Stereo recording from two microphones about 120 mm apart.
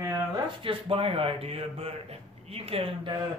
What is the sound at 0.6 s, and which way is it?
A man's voice, 50° right (ahead or behind).